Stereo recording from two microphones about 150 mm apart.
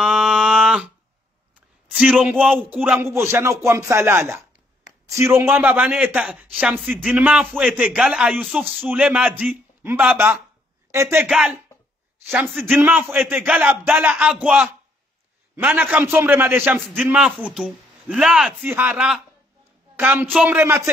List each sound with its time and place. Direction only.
0.0 s a sound: 5° right (ahead or behind)
1.9 s a man's voice: 5° right (ahead or behind)
11.2 s speech: 5° right (ahead or behind)
12.7 s a man's voice: 15° right (ahead or behind)
16.8 s a man's voice: centre (ahead or behind); by 20.9 s 15° right (ahead or behind)